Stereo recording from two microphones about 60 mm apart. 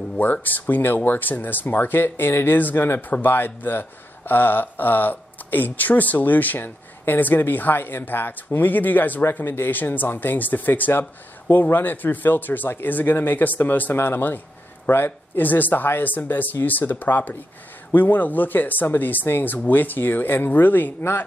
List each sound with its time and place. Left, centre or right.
0.2 s speech: left
10.9 s speech: left